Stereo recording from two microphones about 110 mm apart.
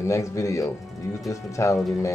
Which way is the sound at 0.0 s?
25° left (ahead or behind).